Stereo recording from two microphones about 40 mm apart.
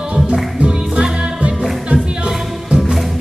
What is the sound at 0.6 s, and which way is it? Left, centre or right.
Music, right.